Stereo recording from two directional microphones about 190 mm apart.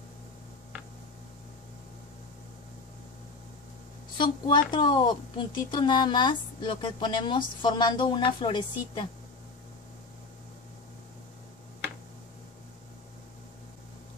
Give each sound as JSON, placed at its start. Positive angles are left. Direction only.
{"t": 4.2, "sound": "a woman's voice", "side_deg": 25}